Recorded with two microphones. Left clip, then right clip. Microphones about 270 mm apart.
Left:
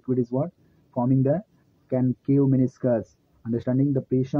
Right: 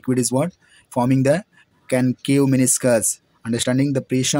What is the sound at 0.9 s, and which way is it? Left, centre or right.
Speech, right.